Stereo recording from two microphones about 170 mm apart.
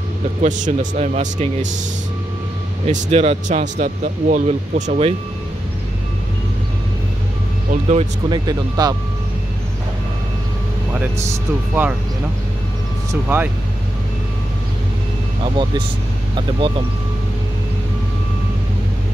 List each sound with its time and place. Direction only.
0.4 s speech: 45° right (ahead or behind)
2.9 s speech: 40° right (ahead or behind)
7.7 s speech: 40° right (ahead or behind)
8.3 s speech: 20° right (ahead or behind)
11.8 s speech: 15° right (ahead or behind)
13.3 s speech: 15° right (ahead or behind)